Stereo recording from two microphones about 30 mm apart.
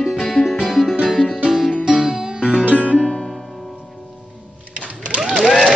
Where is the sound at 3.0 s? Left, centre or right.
Centre.